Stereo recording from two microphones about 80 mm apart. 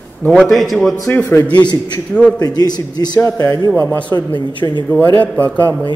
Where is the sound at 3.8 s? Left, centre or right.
Left.